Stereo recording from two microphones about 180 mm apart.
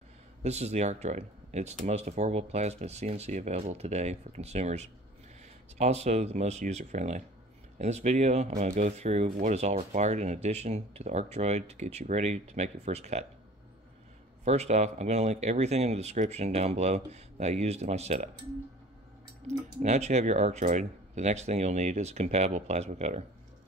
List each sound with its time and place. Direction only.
0.4 s speech: 35° right (ahead or behind)
14.4 s speech: 35° right (ahead or behind)
19.4 s speech: 40° right (ahead or behind)